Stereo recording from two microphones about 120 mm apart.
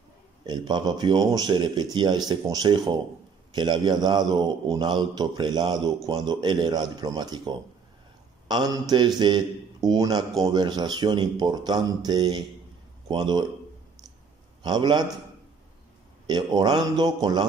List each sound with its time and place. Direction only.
0.5 s speech: 35° right (ahead or behind)
14.6 s speech: 40° right (ahead or behind)
16.3 s speech: 35° right (ahead or behind)